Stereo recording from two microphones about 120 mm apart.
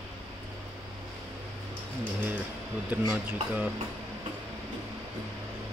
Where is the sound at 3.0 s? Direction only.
15° right (ahead or behind).